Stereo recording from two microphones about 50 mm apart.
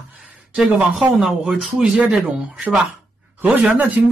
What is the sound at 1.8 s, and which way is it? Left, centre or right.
Speech, centre.